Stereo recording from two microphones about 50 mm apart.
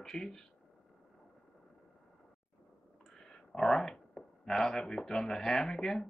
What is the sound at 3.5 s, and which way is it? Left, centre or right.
Speech, centre.